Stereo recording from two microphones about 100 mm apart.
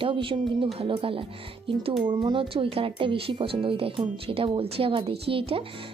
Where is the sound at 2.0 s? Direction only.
55° right (ahead or behind).